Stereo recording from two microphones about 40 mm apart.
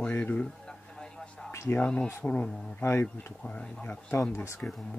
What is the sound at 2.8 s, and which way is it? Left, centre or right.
Speech, left.